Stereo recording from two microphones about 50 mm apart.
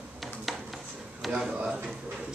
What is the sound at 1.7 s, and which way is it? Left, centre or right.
Speech, right.